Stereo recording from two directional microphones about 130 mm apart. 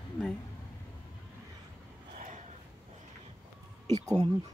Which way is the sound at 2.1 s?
75° right (ahead or behind).